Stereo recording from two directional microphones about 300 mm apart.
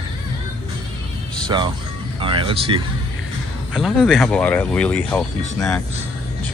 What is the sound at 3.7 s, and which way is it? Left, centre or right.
Speech, centre.